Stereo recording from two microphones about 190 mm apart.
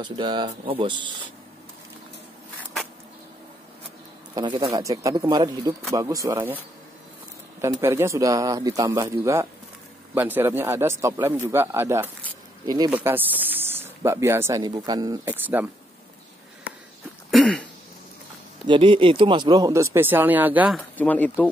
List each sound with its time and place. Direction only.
0.0 s speech: 25° right (ahead or behind)
4.4 s speech: 25° right (ahead or behind)
7.6 s speech: 15° right (ahead or behind)
12.9 s speech: 10° right (ahead or behind)
17.3 s throat clearing: centre (ahead or behind)
18.7 s speech: 25° right (ahead or behind); by 20.8 s 5° right (ahead or behind)
21.0 s speech: 10° left (ahead or behind)